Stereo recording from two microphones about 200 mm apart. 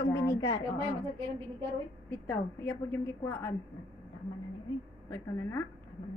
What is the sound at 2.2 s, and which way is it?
A woman's voice, 10° left (ahead or behind).